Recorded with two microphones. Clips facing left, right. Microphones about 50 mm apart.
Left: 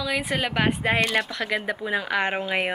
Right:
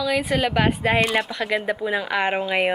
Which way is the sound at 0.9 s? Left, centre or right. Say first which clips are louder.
Right 3 dB; centre.